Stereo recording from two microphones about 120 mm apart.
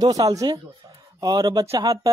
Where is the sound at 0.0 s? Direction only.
30° right (ahead or behind).